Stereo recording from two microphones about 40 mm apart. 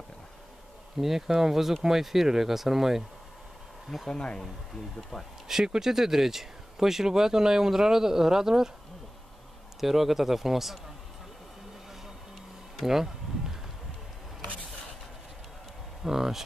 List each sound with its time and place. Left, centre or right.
0.9 s speech: centre
4.1 s speech: left
5.5 s speech: centre
9.8 s speech: centre
12.8 s a sound: centre
16.0 s speech: centre